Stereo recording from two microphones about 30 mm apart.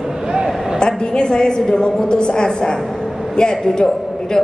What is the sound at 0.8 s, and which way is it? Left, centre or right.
A woman's voice, left.